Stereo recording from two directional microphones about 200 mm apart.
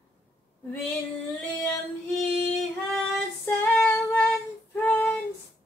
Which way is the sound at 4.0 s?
Centre (ahead or behind).